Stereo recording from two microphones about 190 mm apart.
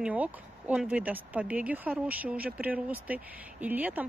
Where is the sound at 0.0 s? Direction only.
5° right (ahead or behind).